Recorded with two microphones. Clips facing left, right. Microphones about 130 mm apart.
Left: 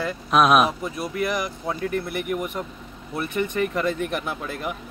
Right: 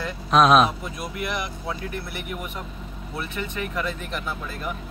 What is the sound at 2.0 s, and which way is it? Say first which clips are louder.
Speech: left 7 dB; 45° left (ahead or behind).